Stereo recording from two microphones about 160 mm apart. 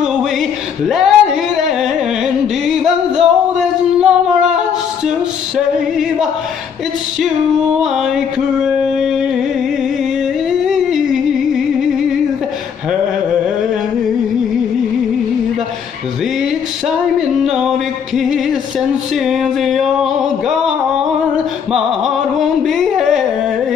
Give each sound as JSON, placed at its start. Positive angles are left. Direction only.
{"t": 0.8, "sound": "a sound", "side_deg": 0}
{"t": 7.8, "sound": "mantra", "side_deg": -5}
{"t": 10.6, "sound": "music", "side_deg": -5}
{"t": 18.1, "sound": "music", "side_deg": 0}
{"t": 19.1, "sound": "a sound", "side_deg": 0}
{"t": 22.6, "sound": "carnatic music", "side_deg": 0}